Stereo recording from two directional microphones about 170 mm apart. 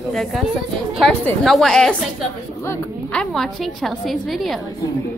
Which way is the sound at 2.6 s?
15° left (ahead or behind).